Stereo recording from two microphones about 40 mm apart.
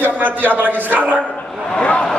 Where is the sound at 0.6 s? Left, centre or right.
Right.